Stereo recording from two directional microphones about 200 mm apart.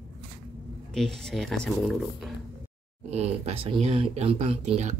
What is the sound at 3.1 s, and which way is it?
Speech, 30° right (ahead or behind).